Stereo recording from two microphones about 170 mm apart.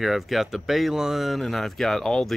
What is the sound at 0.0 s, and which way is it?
Speech, centre (ahead or behind).